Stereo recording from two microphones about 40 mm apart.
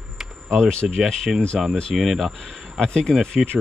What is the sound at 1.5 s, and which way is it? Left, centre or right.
Speech, centre.